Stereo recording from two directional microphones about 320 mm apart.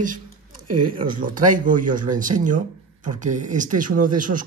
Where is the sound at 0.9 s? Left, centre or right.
Right.